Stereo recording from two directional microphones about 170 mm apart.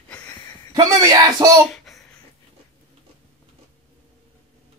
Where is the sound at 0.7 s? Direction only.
20° right (ahead or behind).